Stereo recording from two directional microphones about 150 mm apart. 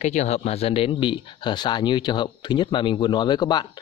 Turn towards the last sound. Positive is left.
turn(degrees=30)  # may be behind; listen again after turning